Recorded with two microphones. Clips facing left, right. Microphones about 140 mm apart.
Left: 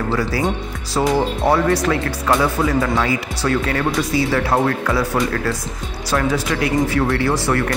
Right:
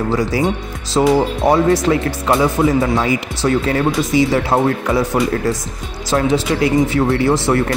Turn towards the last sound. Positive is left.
turn(degrees=-20)  # may be behind; listen again after turning